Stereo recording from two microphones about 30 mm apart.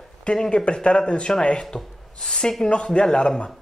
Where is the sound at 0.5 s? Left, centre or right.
Left.